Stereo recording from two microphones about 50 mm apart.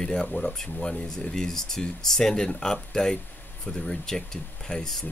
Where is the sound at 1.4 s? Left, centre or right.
Centre.